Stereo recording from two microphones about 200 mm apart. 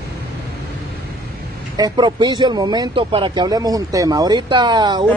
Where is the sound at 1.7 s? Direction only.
20° right (ahead or behind).